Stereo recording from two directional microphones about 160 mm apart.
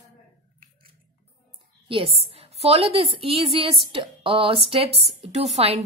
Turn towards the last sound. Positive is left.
turn(degrees=-40)  # may be behind; listen again after turning